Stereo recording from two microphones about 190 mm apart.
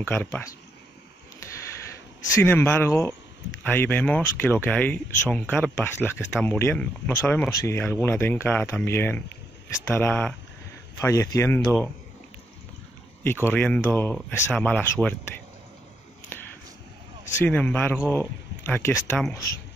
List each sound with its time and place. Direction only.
0.0 s speech: 10° left (ahead or behind)
2.4 s speech: 10° left (ahead or behind)
13.2 s speech: 10° left (ahead or behind)
17.5 s speech: 10° left (ahead or behind)